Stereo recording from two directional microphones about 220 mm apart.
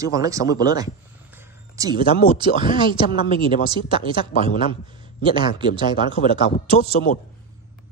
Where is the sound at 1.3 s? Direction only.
15° right (ahead or behind).